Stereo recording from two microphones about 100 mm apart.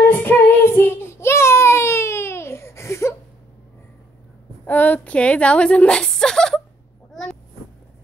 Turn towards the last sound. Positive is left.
turn(degrees=0)  # may be behind; listen again after turning